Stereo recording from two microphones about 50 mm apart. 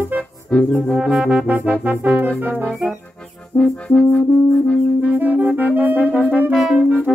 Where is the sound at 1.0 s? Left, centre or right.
Centre.